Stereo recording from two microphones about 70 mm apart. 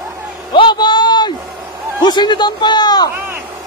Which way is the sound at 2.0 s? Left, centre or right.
Left.